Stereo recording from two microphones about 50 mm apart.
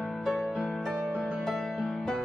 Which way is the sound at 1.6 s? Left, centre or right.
Centre.